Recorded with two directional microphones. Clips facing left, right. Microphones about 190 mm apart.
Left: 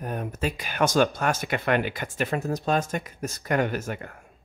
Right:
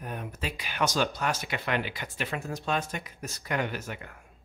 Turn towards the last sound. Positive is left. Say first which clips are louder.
# left 6 dB
turn(degrees=45)  # may be behind; listen again after turning